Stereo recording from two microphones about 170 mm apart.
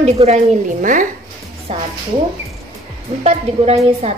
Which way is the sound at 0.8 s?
50° right (ahead or behind).